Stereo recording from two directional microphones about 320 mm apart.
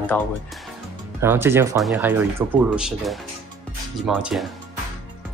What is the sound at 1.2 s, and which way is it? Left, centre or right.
Speech, centre.